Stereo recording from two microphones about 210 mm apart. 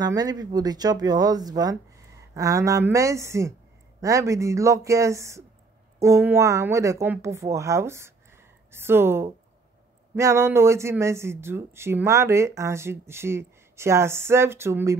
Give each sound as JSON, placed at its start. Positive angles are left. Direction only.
{"t": 0.0, "sound": "a woman's voice", "side_deg": -20}